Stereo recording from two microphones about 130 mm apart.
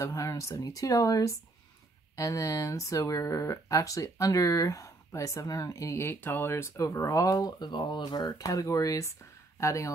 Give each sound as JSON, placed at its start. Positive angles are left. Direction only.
{"t": 0.0, "sound": "speech", "side_deg": 25}